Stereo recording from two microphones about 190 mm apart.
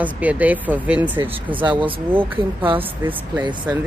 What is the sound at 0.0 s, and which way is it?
Speech, 10° right (ahead or behind).